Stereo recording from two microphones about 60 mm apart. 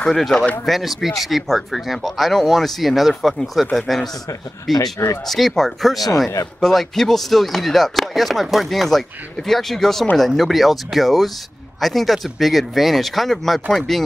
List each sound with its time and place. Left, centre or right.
0.0 s speech: centre
4.7 s speech: left
5.2 s speech: centre